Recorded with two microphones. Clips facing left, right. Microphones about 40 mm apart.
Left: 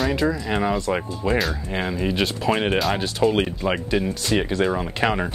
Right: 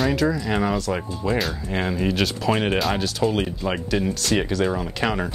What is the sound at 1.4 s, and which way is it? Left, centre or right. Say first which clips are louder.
Speech: even; centre.